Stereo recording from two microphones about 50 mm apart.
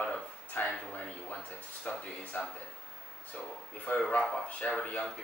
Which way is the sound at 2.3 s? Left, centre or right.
Left.